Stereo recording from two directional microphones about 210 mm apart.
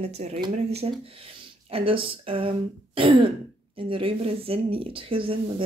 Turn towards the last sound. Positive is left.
turn(degrees=-25)  # may be behind; listen again after turning